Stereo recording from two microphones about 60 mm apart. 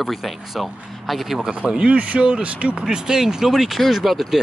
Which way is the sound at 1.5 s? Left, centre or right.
Centre.